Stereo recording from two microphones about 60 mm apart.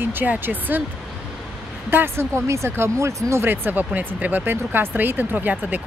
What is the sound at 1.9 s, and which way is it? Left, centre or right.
Speech, right.